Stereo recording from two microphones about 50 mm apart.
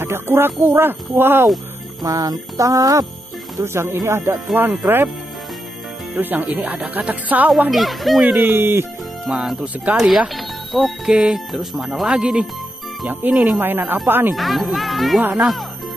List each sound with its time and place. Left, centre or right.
0.0 s speech: right
2.0 s speech: right
3.6 s speech: right
4.6 s speech: right
6.1 s music: right
7.7 s speech: centre
8.3 s speech: right
9.3 s speech: centre
11.1 s speech: centre
11.3 s speech: centre
13.0 s music: right
13.6 s speech: right
14.3 s speech: centre